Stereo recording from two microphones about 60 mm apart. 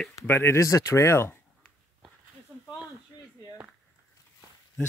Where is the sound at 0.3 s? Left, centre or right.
Left.